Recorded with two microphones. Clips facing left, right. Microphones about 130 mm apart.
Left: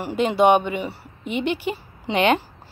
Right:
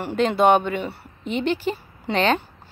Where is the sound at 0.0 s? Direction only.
10° left (ahead or behind).